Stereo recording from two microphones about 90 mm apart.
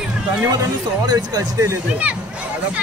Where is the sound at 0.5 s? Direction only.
45° right (ahead or behind).